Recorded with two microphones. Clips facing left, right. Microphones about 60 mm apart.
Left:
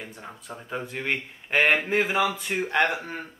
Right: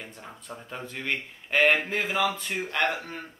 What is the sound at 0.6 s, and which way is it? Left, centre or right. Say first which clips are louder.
Speech: left 6 dB; centre.